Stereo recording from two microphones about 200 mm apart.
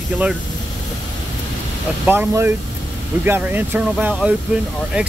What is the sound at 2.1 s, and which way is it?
Speech, 10° right (ahead or behind).